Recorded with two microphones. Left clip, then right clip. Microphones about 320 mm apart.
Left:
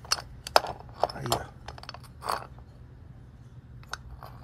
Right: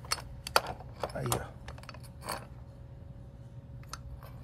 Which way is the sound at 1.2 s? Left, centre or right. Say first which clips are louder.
Left 5 dB; centre.